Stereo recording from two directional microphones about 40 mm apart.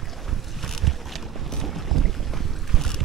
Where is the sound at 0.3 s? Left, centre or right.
Centre.